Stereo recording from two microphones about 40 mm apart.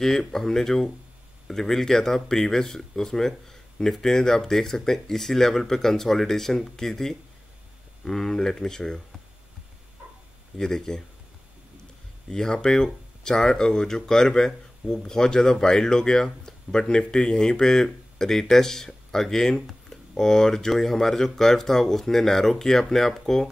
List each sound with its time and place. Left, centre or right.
0.0 s speech: centre
10.6 s speech: centre
12.3 s speech: centre